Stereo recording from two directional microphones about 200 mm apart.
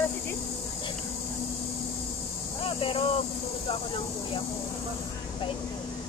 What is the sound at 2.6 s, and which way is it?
Speech, 25° left (ahead or behind).